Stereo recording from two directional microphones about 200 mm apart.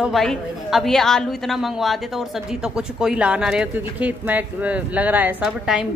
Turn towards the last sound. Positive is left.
turn(degrees=-5)  # may be behind; listen again after turning